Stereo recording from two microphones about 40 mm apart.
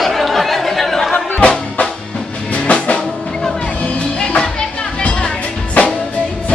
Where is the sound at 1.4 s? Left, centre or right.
Centre.